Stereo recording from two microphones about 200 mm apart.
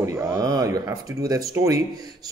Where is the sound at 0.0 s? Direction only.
15° right (ahead or behind).